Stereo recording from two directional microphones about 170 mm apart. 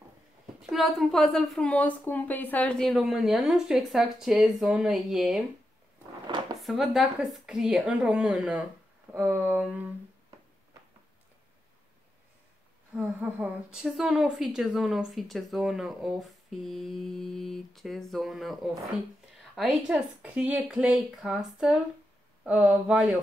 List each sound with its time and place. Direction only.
0.6 s speech: centre (ahead or behind)
6.2 s a sound: 25° right (ahead or behind)
6.6 s speech: centre (ahead or behind)
12.9 s speech: 10° right (ahead or behind)